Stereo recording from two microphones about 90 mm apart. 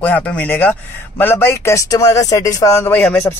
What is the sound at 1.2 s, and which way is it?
Speech, 25° left (ahead or behind).